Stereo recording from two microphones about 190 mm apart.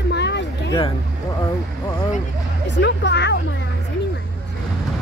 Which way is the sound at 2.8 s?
65° left (ahead or behind).